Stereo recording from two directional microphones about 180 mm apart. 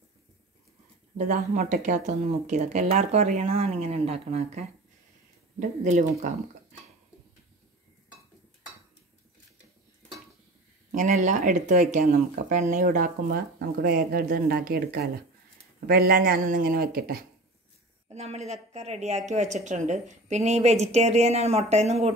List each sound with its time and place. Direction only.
1.1 s speech: 45° right (ahead or behind)
10.9 s speech: 45° right (ahead or behind)
18.1 s speech: 35° right (ahead or behind)